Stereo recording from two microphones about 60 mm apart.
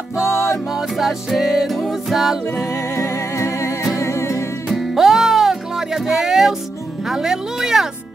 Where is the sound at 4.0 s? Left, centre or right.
Left.